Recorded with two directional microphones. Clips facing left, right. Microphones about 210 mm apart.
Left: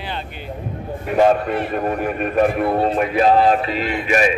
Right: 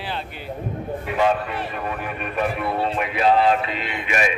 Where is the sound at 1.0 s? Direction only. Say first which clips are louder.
Left 6 dB; 45° left (ahead or behind).